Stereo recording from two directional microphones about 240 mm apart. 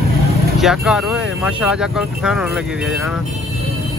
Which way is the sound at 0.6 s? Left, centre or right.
Centre.